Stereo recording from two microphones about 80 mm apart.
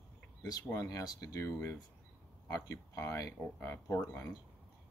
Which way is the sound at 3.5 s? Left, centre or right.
Left.